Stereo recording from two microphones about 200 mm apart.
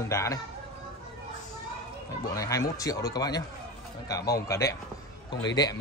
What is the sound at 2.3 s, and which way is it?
A man's voice, 15° left (ahead or behind).